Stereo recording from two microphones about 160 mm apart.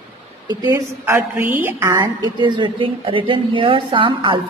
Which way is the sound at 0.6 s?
15° right (ahead or behind).